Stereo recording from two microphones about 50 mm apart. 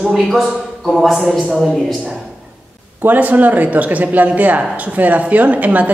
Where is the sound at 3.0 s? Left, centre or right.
Right.